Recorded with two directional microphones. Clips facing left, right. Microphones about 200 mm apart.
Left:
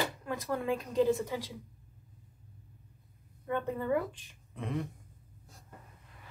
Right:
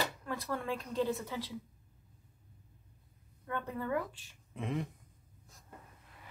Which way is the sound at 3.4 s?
20° left (ahead or behind).